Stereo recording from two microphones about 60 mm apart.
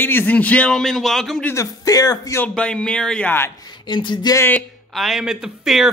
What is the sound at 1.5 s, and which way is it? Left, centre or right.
Speech, left.